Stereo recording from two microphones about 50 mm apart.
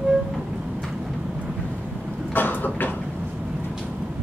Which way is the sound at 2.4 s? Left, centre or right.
Left.